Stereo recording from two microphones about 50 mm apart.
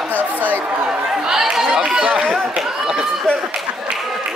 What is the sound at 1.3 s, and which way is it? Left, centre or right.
Chatter, centre.